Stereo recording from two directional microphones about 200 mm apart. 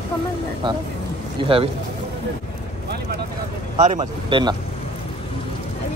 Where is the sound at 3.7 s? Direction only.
35° right (ahead or behind).